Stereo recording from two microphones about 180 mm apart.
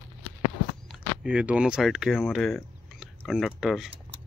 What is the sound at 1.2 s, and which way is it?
Speech, 5° right (ahead or behind).